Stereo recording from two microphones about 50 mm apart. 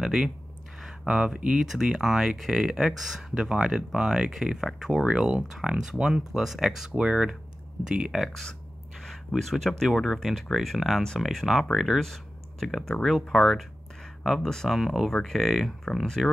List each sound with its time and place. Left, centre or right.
0.0 s speech: centre
9.4 s speech: centre
12.0 s a sound: centre
13.0 s speech: centre
14.4 s speech: centre
14.7 s speech: centre